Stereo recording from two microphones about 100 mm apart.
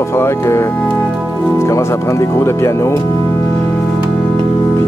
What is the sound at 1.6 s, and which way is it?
Speech, 30° left (ahead or behind).